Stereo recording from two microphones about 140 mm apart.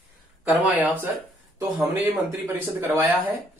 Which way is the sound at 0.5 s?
10° right (ahead or behind).